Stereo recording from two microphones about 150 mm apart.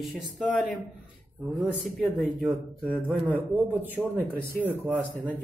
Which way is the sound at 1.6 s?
Centre (ahead or behind).